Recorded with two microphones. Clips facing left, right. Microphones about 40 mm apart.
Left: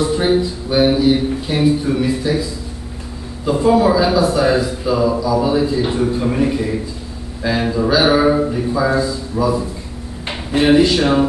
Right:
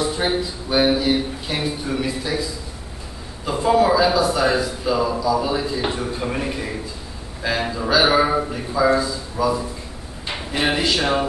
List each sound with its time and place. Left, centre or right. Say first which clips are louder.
0.0 s speech: left 6 dB; centre
3.4 s speech: left 4 dB; centre
10.7 s speech: left 8 dB; centre